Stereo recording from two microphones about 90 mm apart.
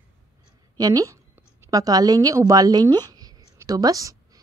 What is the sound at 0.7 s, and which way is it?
A woman's voice, 45° right (ahead or behind).